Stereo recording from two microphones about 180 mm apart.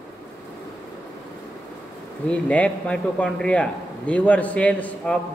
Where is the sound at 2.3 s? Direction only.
5° left (ahead or behind).